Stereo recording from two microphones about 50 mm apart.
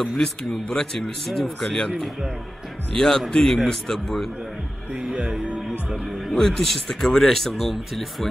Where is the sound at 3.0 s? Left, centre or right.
Centre.